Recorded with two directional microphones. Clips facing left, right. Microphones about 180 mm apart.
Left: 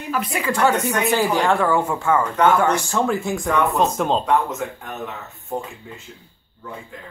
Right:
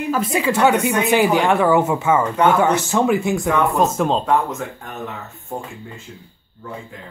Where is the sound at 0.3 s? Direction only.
20° right (ahead or behind).